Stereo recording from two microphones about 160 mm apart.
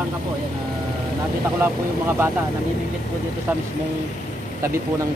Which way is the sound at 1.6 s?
15° right (ahead or behind).